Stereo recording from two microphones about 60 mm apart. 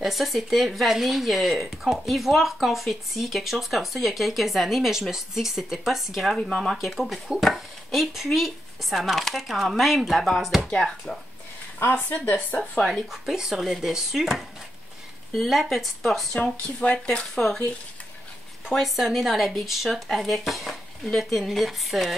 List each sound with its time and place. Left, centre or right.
0.0 s speech: centre
11.8 s speech: left
12.8 s speech: centre
16.6 s speech: centre
18.7 s speech: centre